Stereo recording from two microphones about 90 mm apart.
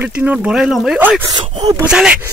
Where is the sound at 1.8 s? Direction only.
10° right (ahead or behind).